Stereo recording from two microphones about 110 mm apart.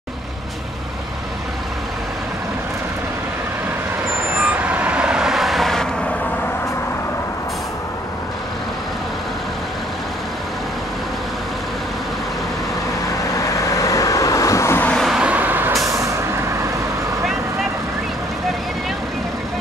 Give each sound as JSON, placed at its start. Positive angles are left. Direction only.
{"t": 4.4, "sound": "vehicle", "side_deg": -15}
{"t": 13.4, "sound": "vehicle", "side_deg": 30}
{"t": 15.0, "sound": "vehicle", "side_deg": -10}
{"t": 15.9, "sound": "vehicle", "side_deg": -25}